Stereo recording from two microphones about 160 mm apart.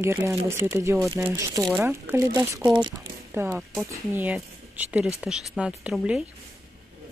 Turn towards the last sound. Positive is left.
turn(degrees=-5)  # may be behind; listen again after turning